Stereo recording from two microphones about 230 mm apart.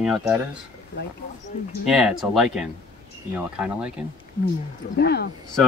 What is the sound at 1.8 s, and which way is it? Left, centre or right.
Speech, centre.